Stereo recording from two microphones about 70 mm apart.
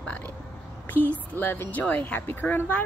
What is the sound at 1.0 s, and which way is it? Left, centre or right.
A woman's voice, left.